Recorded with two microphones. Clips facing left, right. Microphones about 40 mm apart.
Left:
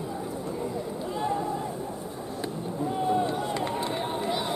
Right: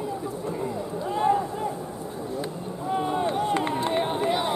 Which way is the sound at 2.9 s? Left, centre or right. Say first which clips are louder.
Right 2 dB; right.